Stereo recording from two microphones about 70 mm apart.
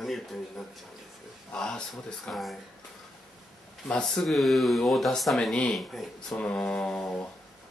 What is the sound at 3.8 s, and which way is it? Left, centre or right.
Speech, centre.